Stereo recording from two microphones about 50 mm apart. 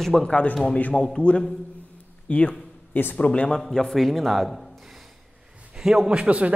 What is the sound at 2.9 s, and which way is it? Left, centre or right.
Speech, left.